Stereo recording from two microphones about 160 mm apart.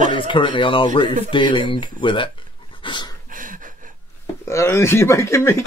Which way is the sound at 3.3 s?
55° right (ahead or behind).